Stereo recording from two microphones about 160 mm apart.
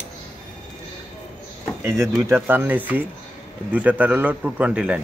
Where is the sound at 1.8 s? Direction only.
15° right (ahead or behind).